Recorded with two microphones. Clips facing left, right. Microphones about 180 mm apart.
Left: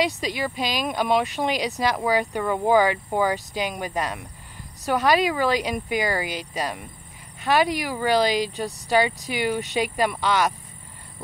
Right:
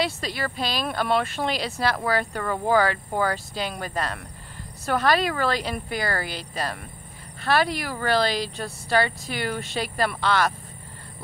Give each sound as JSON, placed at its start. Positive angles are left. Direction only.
{"t": 0.0, "sound": "speech", "side_deg": 15}